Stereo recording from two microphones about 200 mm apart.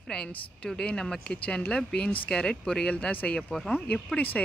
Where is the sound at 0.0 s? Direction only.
5° left (ahead or behind).